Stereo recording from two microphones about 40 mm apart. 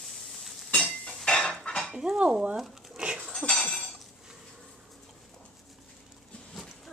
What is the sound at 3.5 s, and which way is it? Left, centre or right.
Chink, centre.